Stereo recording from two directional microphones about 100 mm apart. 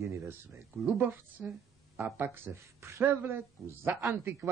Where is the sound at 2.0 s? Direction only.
25° right (ahead or behind).